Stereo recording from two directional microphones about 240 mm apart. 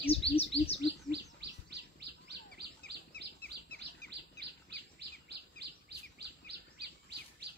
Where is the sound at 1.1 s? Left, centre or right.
Right.